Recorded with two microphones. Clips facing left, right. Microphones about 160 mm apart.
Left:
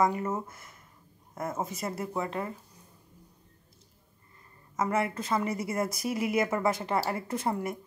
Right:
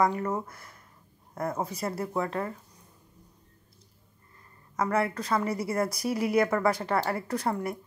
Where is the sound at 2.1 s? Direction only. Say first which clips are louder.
Right 3 dB; 10° left (ahead or behind).